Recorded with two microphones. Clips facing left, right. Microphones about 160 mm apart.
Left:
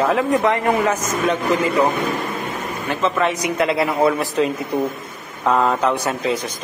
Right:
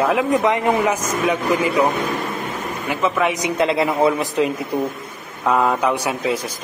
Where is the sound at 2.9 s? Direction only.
10° right (ahead or behind).